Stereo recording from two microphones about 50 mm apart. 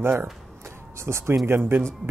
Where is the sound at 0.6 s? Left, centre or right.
Right.